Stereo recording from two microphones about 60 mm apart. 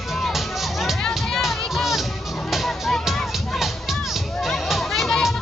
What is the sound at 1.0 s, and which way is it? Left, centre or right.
Music, centre.